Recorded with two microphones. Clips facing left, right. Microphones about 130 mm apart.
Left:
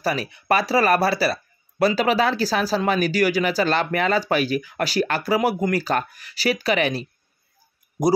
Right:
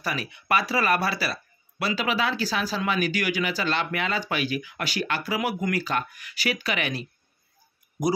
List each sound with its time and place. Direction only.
0.0 s speech: 35° left (ahead or behind)